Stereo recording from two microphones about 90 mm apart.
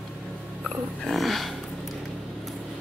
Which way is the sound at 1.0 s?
Centre (ahead or behind).